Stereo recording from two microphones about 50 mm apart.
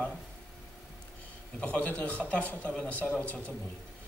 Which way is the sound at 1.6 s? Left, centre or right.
Left.